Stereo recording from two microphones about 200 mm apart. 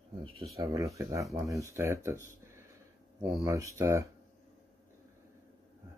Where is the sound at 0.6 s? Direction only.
15° right (ahead or behind).